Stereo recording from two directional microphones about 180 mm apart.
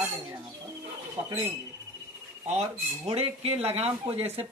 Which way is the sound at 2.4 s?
35° right (ahead or behind).